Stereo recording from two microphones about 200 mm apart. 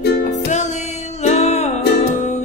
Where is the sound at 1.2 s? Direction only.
30° left (ahead or behind).